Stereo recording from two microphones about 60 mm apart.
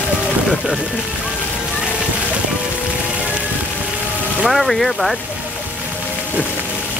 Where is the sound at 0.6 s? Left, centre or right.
Centre.